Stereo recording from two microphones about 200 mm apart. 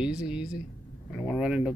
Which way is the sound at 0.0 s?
5° right (ahead or behind).